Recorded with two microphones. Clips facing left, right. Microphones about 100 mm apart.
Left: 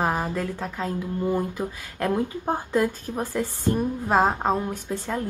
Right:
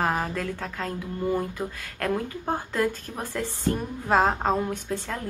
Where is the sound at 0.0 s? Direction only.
10° left (ahead or behind).